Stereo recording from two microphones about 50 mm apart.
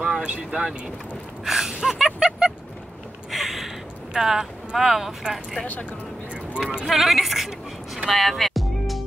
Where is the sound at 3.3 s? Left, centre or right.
Centre.